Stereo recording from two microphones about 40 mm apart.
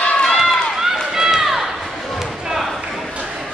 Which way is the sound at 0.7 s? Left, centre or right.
Centre.